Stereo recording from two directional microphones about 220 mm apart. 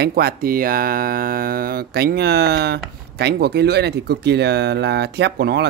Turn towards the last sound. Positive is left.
turn(degrees=-50)  # may be behind; listen again after turning